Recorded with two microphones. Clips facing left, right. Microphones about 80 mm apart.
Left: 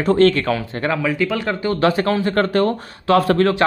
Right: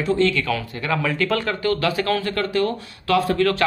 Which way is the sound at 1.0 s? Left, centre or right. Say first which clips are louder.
Left 2 dB; centre.